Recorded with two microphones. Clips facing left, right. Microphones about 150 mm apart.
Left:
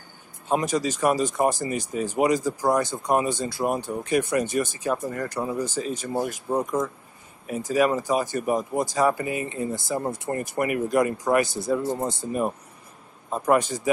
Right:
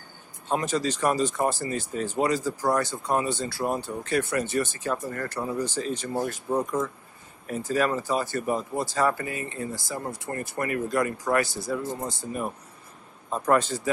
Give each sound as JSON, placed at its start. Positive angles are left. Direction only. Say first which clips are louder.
{"t": 0.5, "sound": "speech", "louder": "left 2 dB", "side_deg": 15}